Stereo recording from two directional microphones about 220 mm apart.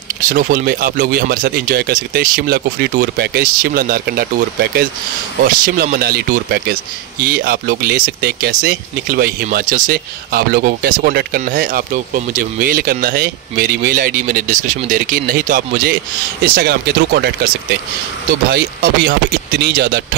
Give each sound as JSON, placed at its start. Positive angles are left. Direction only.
{"t": 0.2, "sound": "speech", "side_deg": -35}
{"t": 18.5, "sound": "speech", "side_deg": -45}